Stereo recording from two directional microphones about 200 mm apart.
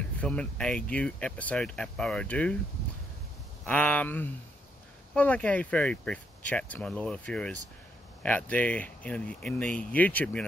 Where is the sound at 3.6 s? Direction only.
10° left (ahead or behind).